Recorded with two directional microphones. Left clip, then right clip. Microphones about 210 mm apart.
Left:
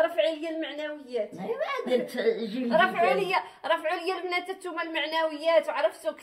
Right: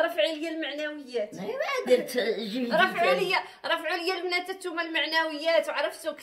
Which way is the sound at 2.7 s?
10° right (ahead or behind).